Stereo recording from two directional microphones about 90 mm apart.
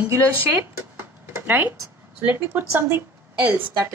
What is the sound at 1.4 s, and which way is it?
A woman's voice, 20° right (ahead or behind).